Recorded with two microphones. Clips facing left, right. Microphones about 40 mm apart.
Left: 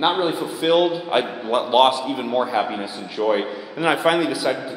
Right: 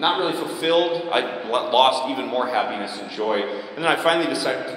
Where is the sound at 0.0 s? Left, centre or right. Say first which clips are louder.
Left 1 dB; centre.